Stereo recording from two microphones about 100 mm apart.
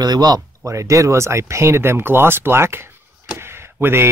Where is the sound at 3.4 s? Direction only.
25° right (ahead or behind).